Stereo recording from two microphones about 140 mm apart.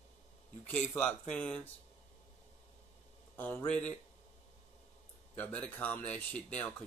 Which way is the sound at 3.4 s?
10° left (ahead or behind).